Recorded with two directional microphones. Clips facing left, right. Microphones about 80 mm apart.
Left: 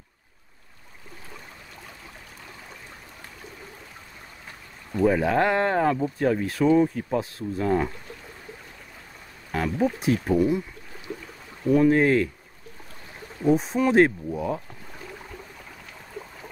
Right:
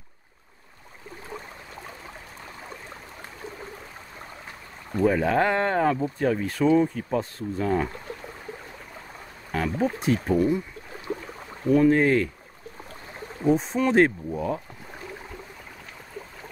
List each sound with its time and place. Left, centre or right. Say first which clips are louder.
5.0 s speech: left 1 dB; centre
9.5 s a sound: left 1 dB; centre
9.9 s speech: left 1 dB; centre
11.1 s a sound: right 4 dB; right
11.7 s speech: even; centre
13.5 s speech: left 1 dB; centre